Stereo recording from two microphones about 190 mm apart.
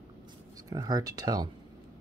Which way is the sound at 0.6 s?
20° right (ahead or behind).